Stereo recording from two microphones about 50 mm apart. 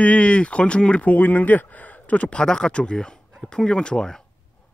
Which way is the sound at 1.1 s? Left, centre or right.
Left.